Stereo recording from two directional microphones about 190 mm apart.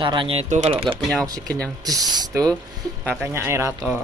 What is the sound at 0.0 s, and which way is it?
Speech, 25° right (ahead or behind).